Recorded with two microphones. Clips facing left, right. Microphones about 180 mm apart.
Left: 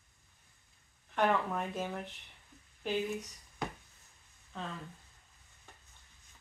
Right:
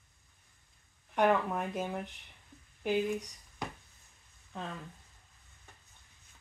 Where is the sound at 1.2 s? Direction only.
15° right (ahead or behind).